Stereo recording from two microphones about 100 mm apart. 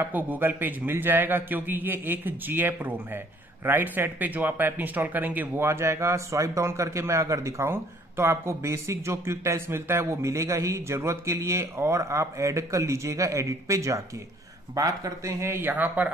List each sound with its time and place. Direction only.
0.0 s speech: 20° right (ahead or behind)